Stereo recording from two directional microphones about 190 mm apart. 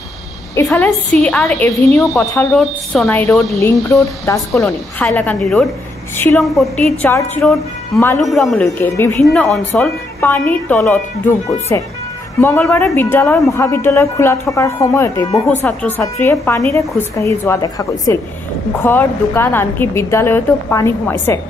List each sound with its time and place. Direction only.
0.7 s speech: centre (ahead or behind)
3.5 s speech: 15° left (ahead or behind)
4.6 s speech: 5° left (ahead or behind)